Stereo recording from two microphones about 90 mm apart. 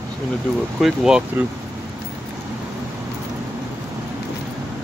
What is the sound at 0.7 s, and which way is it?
Speech, 5° right (ahead or behind).